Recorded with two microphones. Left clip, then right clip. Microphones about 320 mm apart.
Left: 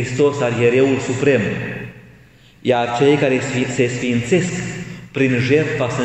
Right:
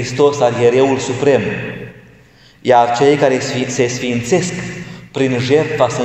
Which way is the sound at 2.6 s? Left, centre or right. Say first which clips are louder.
Right 5 dB; centre.